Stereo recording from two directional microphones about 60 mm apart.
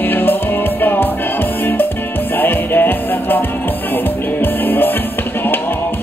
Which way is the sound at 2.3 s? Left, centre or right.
Left.